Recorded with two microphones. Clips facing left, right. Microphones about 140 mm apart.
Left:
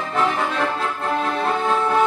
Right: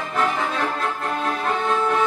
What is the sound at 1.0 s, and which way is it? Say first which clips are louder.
Music: left 3 dB; 25° left (ahead or behind).